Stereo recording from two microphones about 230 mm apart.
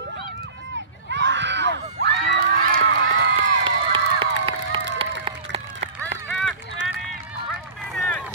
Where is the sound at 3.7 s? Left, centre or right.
Right.